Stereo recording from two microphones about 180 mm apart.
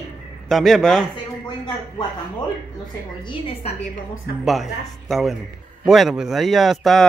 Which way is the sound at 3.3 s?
35° left (ahead or behind).